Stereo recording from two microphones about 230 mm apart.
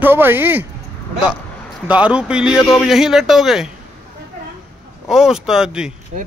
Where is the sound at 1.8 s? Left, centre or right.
Centre.